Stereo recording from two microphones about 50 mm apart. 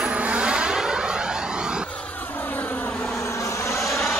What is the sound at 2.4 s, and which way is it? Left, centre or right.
Vehicle, left.